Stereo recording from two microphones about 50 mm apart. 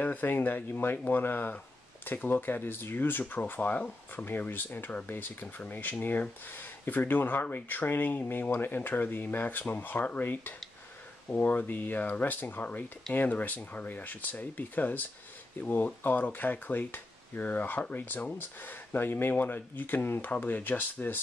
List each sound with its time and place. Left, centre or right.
0.0 s speech: left
4.3 s speech: left